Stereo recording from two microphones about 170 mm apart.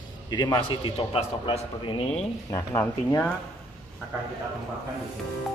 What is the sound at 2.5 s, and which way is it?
Speech, 10° left (ahead or behind).